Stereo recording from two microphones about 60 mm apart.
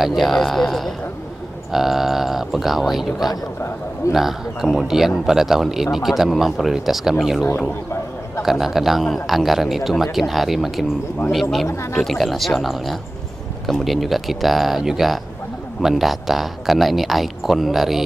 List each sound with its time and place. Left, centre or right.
0.0 s speech: centre
11.6 s speech: left
12.0 s speech: centre